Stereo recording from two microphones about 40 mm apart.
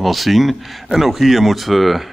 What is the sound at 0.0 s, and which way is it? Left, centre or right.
Speech, centre.